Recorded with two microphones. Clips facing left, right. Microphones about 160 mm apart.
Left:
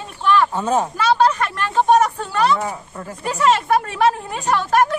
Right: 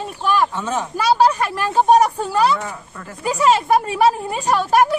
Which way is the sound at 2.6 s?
25° left (ahead or behind).